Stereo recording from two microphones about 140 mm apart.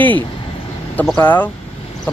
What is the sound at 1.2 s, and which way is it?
Speech, 15° left (ahead or behind).